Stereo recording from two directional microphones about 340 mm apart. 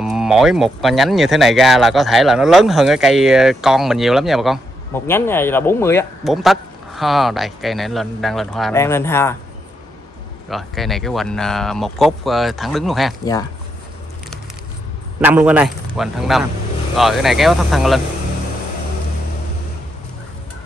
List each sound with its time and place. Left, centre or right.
0.0 s speech: centre
10.5 s speech: centre
13.2 s speech: centre
15.1 s speech: centre